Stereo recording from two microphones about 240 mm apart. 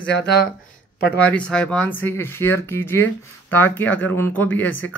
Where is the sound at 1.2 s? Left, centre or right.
Centre.